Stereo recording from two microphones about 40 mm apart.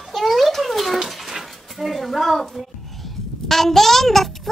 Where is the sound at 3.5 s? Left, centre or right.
Centre.